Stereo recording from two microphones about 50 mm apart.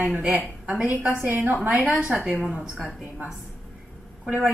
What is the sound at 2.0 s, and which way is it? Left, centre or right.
Speech, right.